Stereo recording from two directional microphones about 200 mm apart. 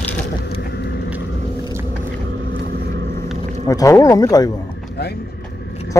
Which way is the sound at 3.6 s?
15° left (ahead or behind).